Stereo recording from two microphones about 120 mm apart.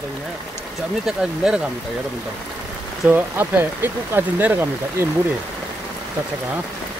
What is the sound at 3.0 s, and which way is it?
Speech, 15° right (ahead or behind).